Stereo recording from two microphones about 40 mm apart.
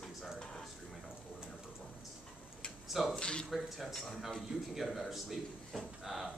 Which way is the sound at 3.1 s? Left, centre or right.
Left.